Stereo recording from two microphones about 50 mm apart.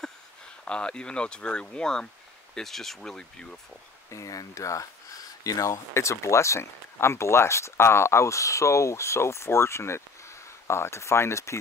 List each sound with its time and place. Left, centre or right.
0.7 s speech: centre
4.1 s speech: left